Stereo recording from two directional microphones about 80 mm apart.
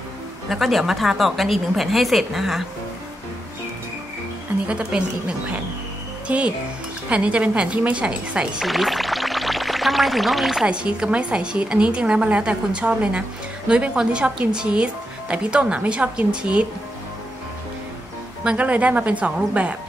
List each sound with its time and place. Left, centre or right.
0.5 s speech: centre
4.6 s speech: centre
6.2 s speech: centre
8.6 s speech: centre
10.7 s speech: centre
18.4 s speech: centre